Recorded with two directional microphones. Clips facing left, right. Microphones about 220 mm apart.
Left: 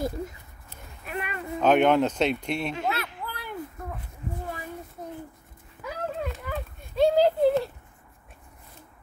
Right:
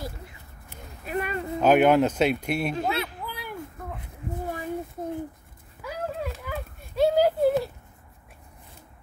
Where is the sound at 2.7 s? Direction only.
35° right (ahead or behind).